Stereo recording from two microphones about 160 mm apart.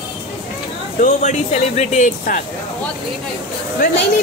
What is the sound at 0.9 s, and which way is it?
Speech, 50° left (ahead or behind).